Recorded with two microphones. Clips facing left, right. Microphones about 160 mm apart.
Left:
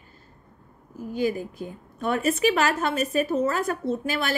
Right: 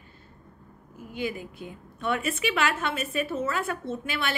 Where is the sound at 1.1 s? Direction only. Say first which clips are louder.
Left 6 dB; 40° left (ahead or behind).